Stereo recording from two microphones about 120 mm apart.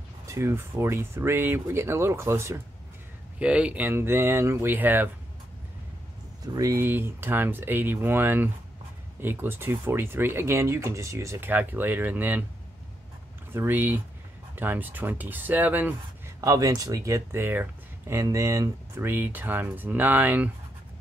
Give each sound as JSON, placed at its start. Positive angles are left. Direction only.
{"t": 0.3, "sound": "speech", "side_deg": -25}
{"t": 3.3, "sound": "speech", "side_deg": -10}
{"t": 6.4, "sound": "speech", "side_deg": -30}
{"t": 13.5, "sound": "speech", "side_deg": -15}
{"t": 16.3, "sound": "speech", "side_deg": -30}